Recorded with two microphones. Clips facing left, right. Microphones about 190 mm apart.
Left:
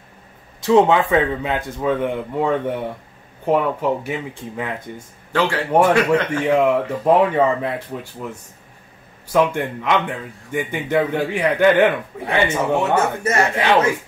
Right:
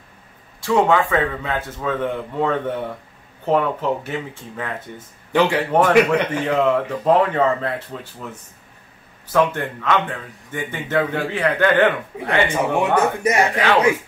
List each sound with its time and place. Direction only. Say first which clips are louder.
0.6 s speech: left 3 dB; 20° left (ahead or behind)
9.3 s speech: left 1 dB; 15° left (ahead or behind)
12.4 s speech: even; 15° right (ahead or behind)